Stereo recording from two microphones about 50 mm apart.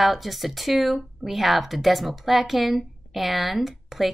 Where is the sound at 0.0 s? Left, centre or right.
Centre.